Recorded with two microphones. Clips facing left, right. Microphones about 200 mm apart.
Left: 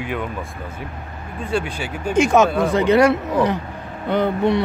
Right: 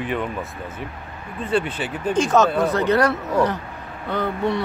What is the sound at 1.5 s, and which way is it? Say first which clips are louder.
Speech: right 1 dB; centre (ahead or behind).